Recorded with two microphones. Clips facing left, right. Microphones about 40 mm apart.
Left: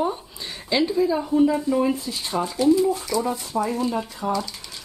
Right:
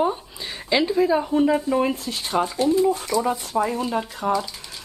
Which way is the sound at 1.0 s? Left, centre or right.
Right.